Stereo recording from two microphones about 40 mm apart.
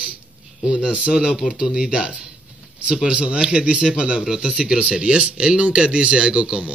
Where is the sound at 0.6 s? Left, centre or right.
Right.